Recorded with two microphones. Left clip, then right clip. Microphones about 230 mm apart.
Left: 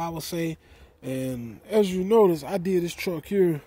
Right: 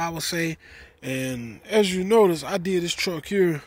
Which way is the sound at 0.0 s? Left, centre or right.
Centre.